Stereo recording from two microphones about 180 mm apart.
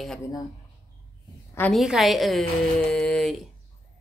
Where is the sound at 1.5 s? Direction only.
10° left (ahead or behind).